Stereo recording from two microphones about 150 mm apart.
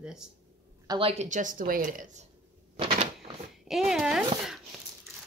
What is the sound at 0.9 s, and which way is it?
Speech, 40° right (ahead or behind).